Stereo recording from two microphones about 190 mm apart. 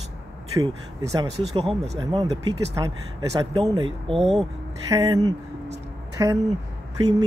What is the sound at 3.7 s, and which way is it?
Speech, 25° right (ahead or behind).